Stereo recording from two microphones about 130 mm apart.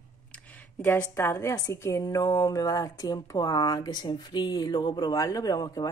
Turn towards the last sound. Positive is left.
turn(degrees=30)  # may be behind; listen again after turning